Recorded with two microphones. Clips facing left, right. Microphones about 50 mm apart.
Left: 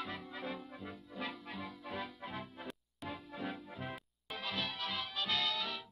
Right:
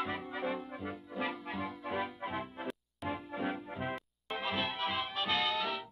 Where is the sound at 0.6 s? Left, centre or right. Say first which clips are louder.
Right 6 dB; right.